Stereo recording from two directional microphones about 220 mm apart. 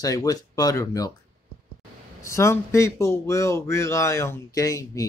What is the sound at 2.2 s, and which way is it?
Speech, 15° left (ahead or behind).